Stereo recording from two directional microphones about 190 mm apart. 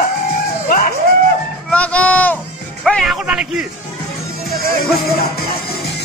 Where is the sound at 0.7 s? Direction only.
50° left (ahead or behind).